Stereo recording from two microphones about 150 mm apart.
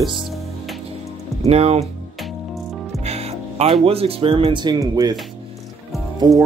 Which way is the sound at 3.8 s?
40° right (ahead or behind).